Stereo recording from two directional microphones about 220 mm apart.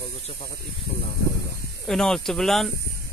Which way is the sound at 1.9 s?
Centre (ahead or behind).